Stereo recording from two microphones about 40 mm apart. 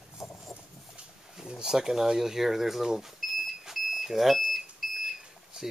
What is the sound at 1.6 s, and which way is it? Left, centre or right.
Speech, centre.